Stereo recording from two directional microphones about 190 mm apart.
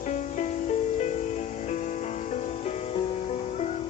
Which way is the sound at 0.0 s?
40° left (ahead or behind).